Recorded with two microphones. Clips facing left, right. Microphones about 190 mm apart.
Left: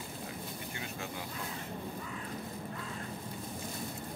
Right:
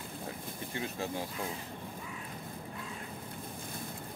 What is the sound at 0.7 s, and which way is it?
Speech, 30° right (ahead or behind).